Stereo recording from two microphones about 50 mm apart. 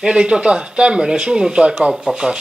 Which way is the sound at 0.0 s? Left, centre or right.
Centre.